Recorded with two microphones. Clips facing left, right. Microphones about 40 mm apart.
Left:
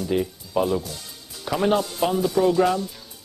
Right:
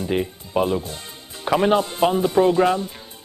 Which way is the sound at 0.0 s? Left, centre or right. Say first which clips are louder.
Right 1 dB; right.